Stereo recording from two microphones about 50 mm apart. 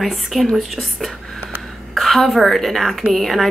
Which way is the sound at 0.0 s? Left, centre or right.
Centre.